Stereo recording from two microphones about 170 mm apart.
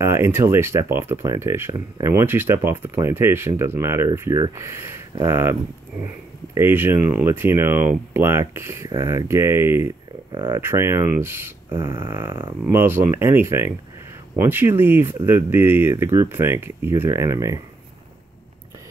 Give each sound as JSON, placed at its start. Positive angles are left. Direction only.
{"t": 0.0, "sound": "speech", "side_deg": -15}
{"t": 10.3, "sound": "speech", "side_deg": -25}
{"t": 10.6, "sound": "speech", "side_deg": -15}